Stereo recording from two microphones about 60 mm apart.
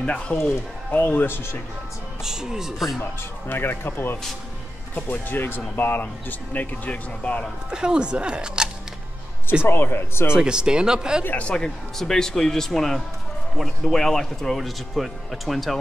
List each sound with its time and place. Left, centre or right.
0.0 s speech: centre
0.9 s speech: left
2.2 s speech: centre
3.0 s speech: left
7.7 s speech: centre
9.7 s speech: left
10.3 s speech: centre
11.3 s speech: centre